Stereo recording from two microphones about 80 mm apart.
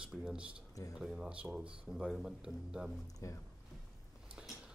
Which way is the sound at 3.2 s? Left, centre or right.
Left.